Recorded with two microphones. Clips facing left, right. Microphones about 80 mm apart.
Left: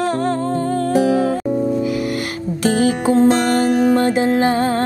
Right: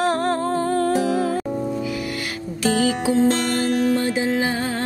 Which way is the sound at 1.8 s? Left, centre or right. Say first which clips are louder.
Left 6 dB; left.